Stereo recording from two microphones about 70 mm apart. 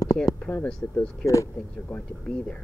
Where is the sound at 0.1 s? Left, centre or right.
Left.